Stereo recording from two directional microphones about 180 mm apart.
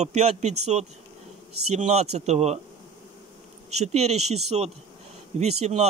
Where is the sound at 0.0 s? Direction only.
40° right (ahead or behind).